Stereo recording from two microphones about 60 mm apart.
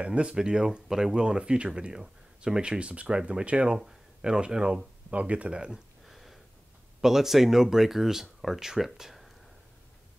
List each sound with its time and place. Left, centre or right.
0.0 s speech: centre
6.0 s a sound: centre
7.0 s speech: centre